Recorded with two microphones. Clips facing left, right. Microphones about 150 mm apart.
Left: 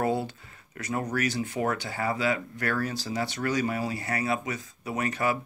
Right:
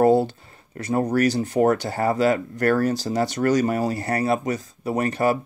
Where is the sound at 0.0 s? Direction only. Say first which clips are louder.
Right 10 dB; 35° right (ahead or behind).